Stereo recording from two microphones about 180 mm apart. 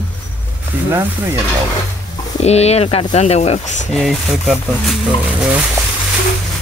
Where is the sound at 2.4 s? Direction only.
35° left (ahead or behind).